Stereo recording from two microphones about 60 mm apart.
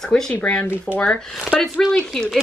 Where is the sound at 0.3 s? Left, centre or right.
Left.